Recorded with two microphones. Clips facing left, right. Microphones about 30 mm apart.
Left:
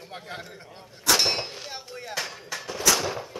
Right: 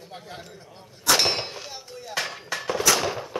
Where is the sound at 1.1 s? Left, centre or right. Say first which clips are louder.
Right 1 dB; centre.